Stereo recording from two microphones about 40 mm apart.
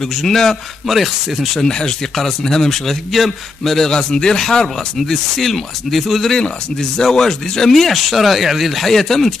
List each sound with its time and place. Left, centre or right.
0.0 s speech: centre
0.8 s a man's voice: centre
1.5 s a man's voice: centre
3.9 s a man's voice: centre
6.3 s speech: centre